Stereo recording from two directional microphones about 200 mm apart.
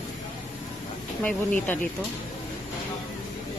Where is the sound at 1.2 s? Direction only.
5° left (ahead or behind).